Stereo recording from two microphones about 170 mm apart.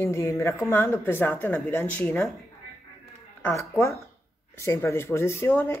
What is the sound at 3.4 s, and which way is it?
Speech, 15° left (ahead or behind).